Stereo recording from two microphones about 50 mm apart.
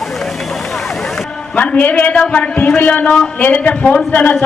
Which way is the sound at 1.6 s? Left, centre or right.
Left.